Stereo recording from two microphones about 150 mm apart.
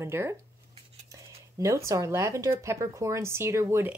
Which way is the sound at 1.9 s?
20° right (ahead or behind).